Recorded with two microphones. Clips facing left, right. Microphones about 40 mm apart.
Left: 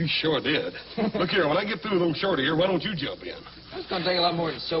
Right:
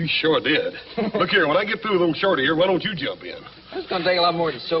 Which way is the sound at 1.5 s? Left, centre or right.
Right.